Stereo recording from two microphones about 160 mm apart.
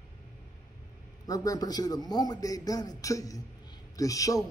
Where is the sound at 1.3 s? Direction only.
25° left (ahead or behind).